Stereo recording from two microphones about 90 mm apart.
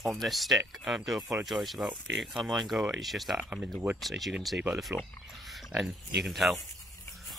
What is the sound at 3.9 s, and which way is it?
Speech, centre (ahead or behind).